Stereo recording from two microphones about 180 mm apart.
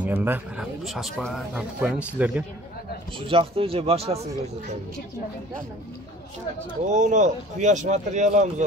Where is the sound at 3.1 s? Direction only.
30° right (ahead or behind).